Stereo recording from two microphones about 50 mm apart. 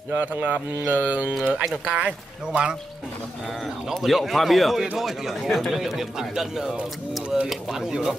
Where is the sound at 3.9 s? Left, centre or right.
Centre.